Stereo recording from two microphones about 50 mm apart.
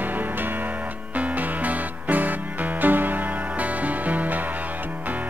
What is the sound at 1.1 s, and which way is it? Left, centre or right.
Music, right.